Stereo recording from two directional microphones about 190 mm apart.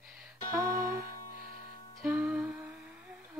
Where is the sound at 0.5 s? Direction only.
15° right (ahead or behind).